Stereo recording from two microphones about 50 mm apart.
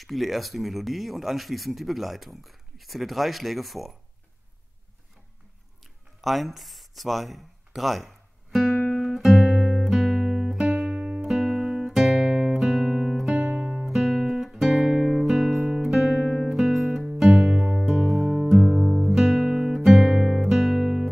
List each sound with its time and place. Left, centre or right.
0.0 s speech: centre
6.2 s speech: centre
8.9 s guitar: centre
11.0 s music: right
11.2 s music: centre
12.9 s guitar: centre
17.1 s music: centre
17.6 s music: centre
17.9 s music: centre
19.4 s guitar: centre
19.8 s music: centre